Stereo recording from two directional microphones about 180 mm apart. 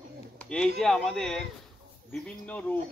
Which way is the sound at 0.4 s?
5° left (ahead or behind).